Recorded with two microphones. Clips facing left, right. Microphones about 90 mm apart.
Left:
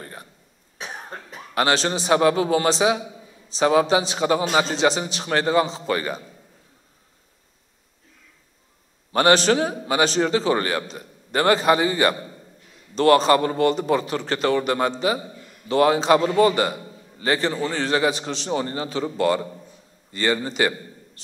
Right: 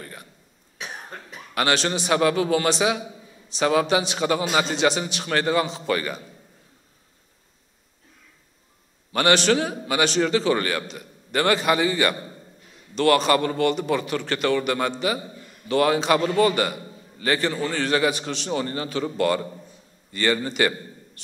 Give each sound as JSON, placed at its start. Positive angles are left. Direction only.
{"t": 0.0, "sound": "cough", "side_deg": 30}
{"t": 0.7, "sound": "a man's voice", "side_deg": 35}
{"t": 9.1, "sound": "a man's voice", "side_deg": 35}